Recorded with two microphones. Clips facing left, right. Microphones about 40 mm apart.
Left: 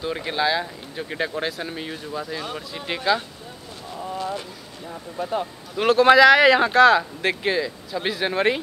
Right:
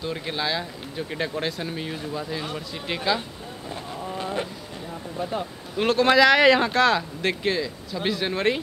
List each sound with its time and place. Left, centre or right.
0.0 s speech: centre
4.2 s a sound: right
5.3 s speech: centre